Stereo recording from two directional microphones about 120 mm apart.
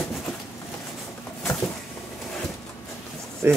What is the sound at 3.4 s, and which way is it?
Speech, 20° right (ahead or behind).